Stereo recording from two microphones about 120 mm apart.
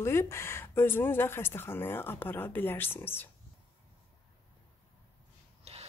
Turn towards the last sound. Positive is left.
turn(degrees=-60)  # may be behind; listen again after turning